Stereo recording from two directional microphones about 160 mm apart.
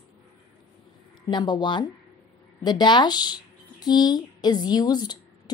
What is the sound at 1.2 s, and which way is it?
Speech, 30° left (ahead or behind).